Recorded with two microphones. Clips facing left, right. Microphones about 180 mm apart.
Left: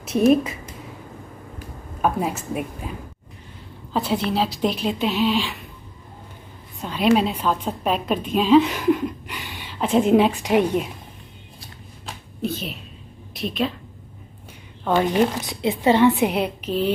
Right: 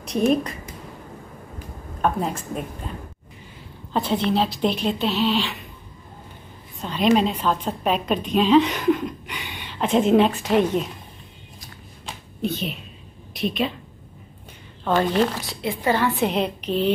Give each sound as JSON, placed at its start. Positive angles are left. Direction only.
{"t": 0.0, "sound": "speech", "side_deg": 5}
{"t": 2.0, "sound": "a woman's voice", "side_deg": 5}
{"t": 3.9, "sound": "a woman's voice", "side_deg": 10}
{"t": 6.8, "sound": "a woman's voice", "side_deg": 10}
{"t": 12.1, "sound": "a sound", "side_deg": 0}
{"t": 13.3, "sound": "a woman's voice", "side_deg": 0}
{"t": 14.9, "sound": "a woman's voice", "side_deg": 15}
{"t": 16.3, "sound": "a woman's voice", "side_deg": 10}